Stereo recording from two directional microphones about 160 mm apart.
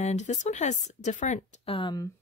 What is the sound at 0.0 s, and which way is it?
Speech, 45° left (ahead or behind).